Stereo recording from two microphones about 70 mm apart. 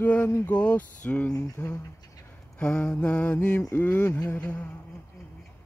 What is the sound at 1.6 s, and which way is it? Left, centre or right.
Speech, left.